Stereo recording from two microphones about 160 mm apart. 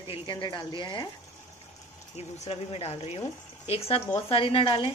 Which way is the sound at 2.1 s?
40° left (ahead or behind).